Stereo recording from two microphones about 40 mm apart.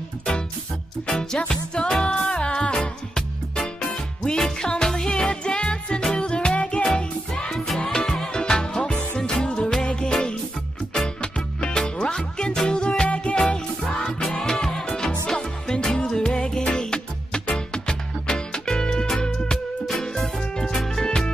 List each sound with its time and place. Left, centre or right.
1.0 s music: centre
7.5 s music: centre
11.1 s music: left